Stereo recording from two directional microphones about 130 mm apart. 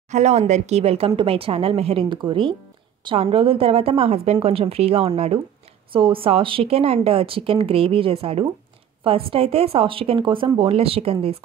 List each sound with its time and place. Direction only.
0.1 s speech: 60° right (ahead or behind)